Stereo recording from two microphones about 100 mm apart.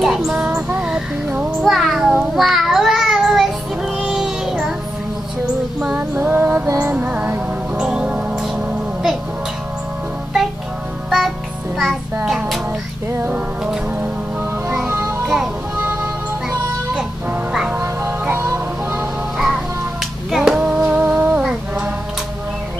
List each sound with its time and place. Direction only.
0.0 s child singing: 5° right (ahead or behind)
0.5 s child singing: 20° right (ahead or behind)
0.7 s a sound: 5° right (ahead or behind)
2.3 s child singing: centre (ahead or behind)
5.9 s mantra: 15° right (ahead or behind)
6.8 s music: 15° right (ahead or behind)
11.1 s music: centre (ahead or behind)
15.0 s music: 5° right (ahead or behind)
15.8 s music: 20° right (ahead or behind)
16.9 s music: 10° right (ahead or behind)
18.2 s music: 25° right (ahead or behind)
19.3 s music: 5° right (ahead or behind)
20.2 s finger snapping: 5° right (ahead or behind)
20.6 s music: 10° right (ahead or behind)